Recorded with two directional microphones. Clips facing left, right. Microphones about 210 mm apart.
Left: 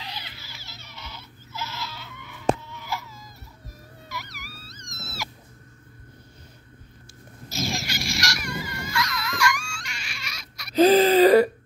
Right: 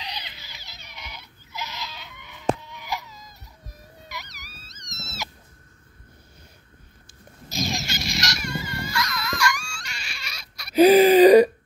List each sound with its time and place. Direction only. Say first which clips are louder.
0.0 s a sound: right 1 dB; 20° right (ahead or behind)
4.1 s wail: left 3 dB; 20° right (ahead or behind)
4.6 s wild animals: left 1 dB; 20° right (ahead or behind)
7.4 s dog: right 1 dB; 20° right (ahead or behind)
10.7 s gasp: right 3 dB; 15° right (ahead or behind)